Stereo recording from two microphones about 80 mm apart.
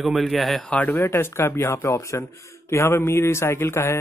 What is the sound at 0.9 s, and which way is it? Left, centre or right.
Speech, left.